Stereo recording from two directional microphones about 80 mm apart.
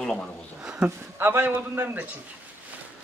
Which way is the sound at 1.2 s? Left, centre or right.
Right.